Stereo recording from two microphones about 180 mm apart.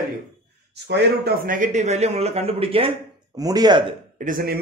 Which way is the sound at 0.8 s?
70° right (ahead or behind).